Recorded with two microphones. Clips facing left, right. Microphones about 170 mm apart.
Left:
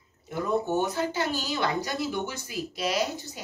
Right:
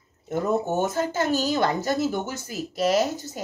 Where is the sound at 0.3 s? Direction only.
45° right (ahead or behind).